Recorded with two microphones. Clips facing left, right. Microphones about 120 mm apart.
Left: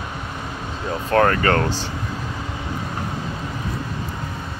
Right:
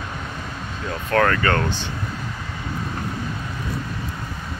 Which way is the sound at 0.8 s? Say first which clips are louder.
Left 2 dB; 30° left (ahead or behind).